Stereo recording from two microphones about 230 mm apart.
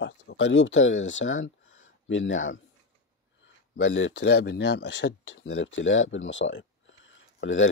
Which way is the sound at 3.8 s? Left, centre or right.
Left.